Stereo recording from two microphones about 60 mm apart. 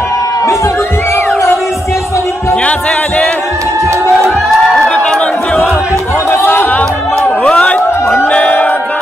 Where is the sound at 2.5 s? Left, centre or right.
Left.